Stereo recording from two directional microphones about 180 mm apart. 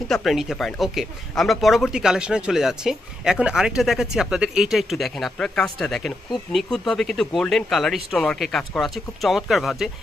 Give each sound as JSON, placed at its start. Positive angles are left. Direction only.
{"t": 0.1, "sound": "speech", "side_deg": 0}